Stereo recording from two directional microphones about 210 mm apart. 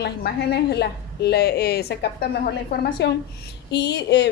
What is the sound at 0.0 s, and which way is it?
A woman's voice, 50° left (ahead or behind).